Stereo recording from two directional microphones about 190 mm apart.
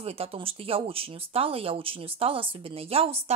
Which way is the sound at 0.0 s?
30° right (ahead or behind).